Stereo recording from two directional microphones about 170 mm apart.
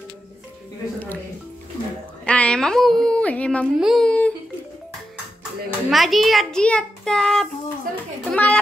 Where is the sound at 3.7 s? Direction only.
Centre (ahead or behind).